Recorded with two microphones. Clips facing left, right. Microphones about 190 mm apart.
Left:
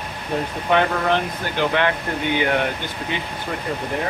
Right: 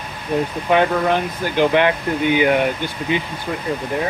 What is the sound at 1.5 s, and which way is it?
Speech, 15° right (ahead or behind).